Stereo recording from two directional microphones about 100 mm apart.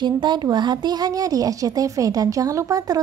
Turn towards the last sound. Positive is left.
turn(degrees=-40)  # may be behind; listen again after turning